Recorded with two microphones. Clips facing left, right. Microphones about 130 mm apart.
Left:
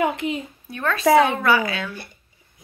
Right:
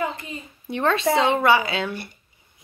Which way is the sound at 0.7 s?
25° right (ahead or behind).